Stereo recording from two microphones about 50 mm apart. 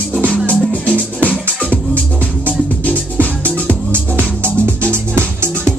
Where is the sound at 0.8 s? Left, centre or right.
Left.